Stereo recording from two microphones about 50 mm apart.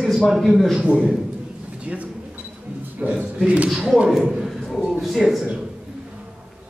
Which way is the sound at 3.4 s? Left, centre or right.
Right.